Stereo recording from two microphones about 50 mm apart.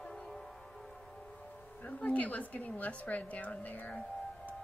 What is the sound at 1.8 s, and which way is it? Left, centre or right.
Speech, left.